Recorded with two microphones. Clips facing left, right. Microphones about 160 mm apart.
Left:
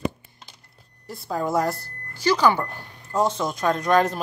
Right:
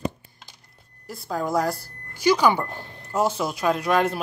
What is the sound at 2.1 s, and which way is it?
Speech, 10° right (ahead or behind).